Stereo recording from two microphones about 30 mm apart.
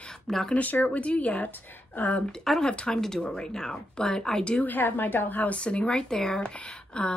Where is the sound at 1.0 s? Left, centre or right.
Left.